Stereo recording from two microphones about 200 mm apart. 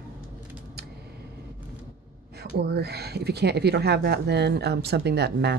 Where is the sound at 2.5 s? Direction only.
55° right (ahead or behind).